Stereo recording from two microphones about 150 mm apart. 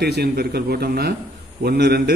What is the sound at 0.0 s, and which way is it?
A man's voice, 90° right.